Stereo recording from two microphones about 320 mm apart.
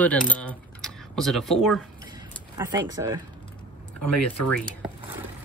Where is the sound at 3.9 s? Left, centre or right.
Left.